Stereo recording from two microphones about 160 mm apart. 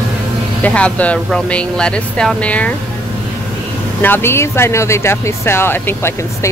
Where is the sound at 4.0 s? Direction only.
15° left (ahead or behind).